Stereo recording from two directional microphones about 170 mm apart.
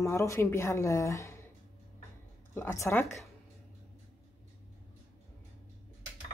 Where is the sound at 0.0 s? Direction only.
15° left (ahead or behind).